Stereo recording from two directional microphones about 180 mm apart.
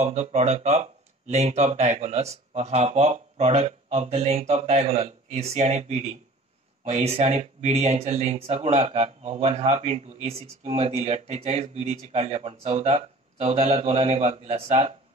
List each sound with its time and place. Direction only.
0.0 s speech: 40° right (ahead or behind)